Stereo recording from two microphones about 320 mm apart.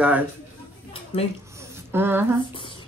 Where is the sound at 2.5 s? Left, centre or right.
Centre.